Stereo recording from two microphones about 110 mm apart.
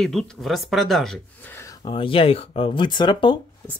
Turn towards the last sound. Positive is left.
turn(degrees=45)  # may be behind; listen again after turning